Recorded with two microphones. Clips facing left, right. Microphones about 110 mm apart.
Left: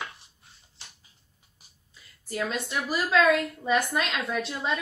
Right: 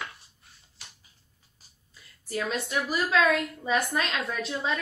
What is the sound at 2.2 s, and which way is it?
A woman's voice, centre (ahead or behind).